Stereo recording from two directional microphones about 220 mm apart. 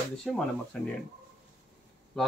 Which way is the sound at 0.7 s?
Centre (ahead or behind).